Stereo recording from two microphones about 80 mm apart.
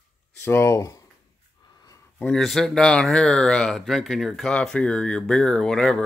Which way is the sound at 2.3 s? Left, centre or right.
Centre.